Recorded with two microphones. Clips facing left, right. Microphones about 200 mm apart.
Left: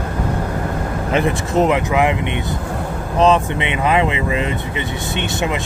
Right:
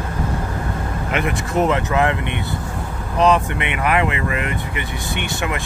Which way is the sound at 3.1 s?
25° left (ahead or behind).